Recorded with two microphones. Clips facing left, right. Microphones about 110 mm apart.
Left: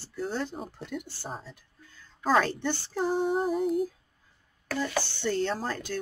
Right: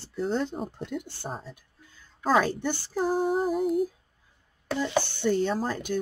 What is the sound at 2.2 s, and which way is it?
Speech, 10° right (ahead or behind).